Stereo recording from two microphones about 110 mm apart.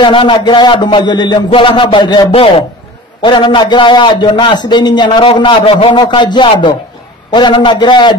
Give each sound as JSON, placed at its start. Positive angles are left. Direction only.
{"t": 0.0, "sound": "a man's voice", "side_deg": 50}
{"t": 2.3, "sound": "a man's voice", "side_deg": 60}
{"t": 3.2, "sound": "a man's voice", "side_deg": 45}